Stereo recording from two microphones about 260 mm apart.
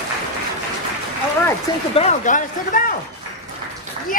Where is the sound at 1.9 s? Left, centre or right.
Left.